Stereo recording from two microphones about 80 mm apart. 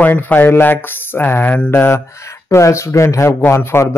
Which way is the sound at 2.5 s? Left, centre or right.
Left.